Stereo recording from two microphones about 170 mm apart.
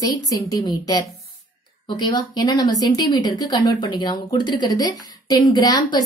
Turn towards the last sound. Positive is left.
turn(degrees=25)  # may be behind; listen again after turning